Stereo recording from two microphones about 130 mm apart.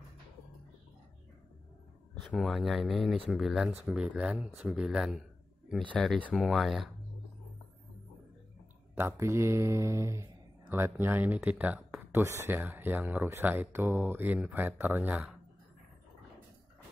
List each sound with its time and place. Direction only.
2.3 s speech: centre (ahead or behind)
8.9 s speech: 20° right (ahead or behind)